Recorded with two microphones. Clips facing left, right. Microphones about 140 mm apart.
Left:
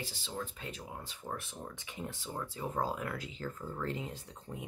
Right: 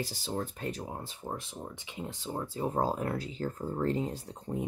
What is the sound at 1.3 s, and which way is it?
Speech, 25° right (ahead or behind).